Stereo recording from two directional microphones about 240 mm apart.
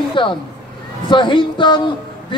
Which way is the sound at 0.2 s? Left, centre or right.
Centre.